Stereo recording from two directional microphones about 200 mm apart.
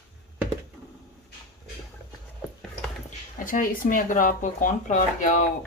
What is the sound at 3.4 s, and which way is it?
Speech, 45° left (ahead or behind).